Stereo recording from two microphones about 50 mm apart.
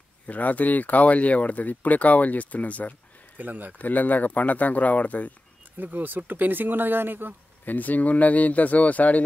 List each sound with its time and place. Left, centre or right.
0.3 s speech: left
3.3 s speech: right
3.7 s speech: left
5.8 s speech: right
7.6 s speech: left